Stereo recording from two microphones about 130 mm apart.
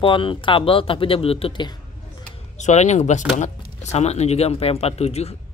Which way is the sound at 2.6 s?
65° left (ahead or behind).